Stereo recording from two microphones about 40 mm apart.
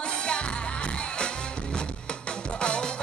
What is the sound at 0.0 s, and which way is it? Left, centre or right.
Music, left.